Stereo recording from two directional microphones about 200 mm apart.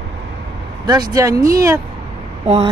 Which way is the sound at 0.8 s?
20° right (ahead or behind).